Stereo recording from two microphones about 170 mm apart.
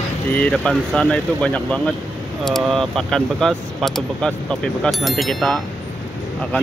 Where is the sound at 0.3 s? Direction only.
5° left (ahead or behind).